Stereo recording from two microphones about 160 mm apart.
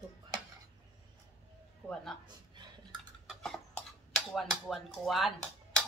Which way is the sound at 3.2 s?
Centre (ahead or behind).